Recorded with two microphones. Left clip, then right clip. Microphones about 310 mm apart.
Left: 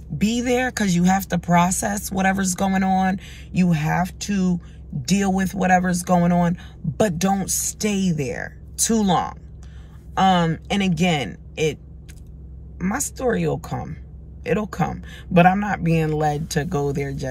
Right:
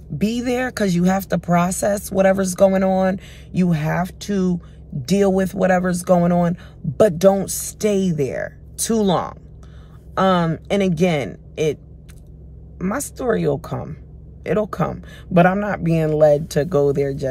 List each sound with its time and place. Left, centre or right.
0.2 s speech: centre
12.7 s speech: centre